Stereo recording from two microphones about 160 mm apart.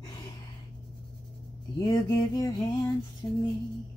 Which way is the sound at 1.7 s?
25° left (ahead or behind).